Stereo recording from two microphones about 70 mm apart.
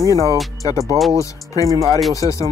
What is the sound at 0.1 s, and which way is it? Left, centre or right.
Speech, left.